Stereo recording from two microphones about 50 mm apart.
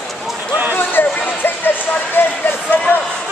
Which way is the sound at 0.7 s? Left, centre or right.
Left.